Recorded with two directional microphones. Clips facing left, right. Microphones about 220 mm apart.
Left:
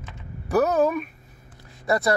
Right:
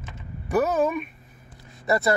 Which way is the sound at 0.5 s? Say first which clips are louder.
Left 2 dB; 5° right (ahead or behind).